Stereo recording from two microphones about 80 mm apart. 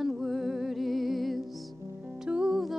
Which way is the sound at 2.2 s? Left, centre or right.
Centre.